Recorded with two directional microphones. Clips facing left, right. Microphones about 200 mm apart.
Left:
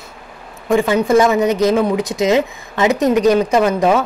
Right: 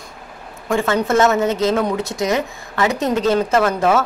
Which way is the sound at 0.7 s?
15° left (ahead or behind).